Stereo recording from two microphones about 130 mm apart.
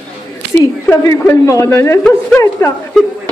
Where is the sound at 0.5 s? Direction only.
20° left (ahead or behind).